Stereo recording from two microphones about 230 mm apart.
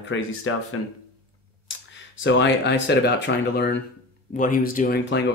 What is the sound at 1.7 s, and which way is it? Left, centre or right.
Speech, left.